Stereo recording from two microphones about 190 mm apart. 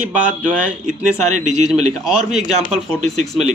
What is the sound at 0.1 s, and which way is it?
Speech, 5° right (ahead or behind).